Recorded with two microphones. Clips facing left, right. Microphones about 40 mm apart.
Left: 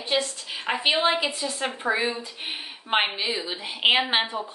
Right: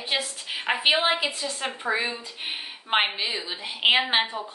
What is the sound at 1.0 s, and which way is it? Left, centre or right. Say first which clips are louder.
Speech: left 1 dB; centre.